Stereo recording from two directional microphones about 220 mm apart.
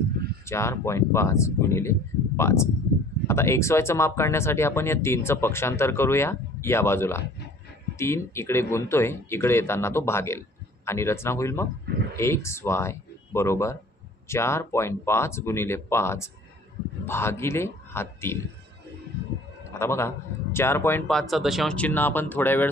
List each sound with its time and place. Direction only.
0.5 s speech: 10° left (ahead or behind)
19.2 s a sound: 50° right (ahead or behind)
19.8 s speech: 10° left (ahead or behind)